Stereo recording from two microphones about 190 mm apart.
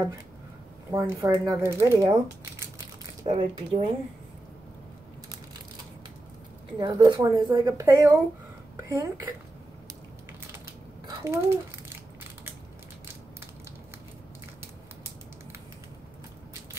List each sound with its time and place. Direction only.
0.9 s speech: 15° right (ahead or behind)
3.3 s speech: 25° right (ahead or behind)
6.8 s speech: 20° right (ahead or behind)
11.1 s a child's voice: 15° right (ahead or behind)